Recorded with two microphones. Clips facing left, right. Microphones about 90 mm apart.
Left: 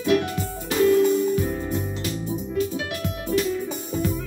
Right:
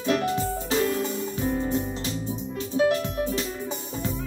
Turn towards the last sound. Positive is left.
turn(degrees=-30)  # may be behind; listen again after turning